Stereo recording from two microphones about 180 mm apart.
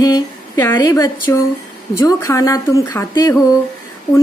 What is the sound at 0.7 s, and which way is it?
Speech, 20° left (ahead or behind).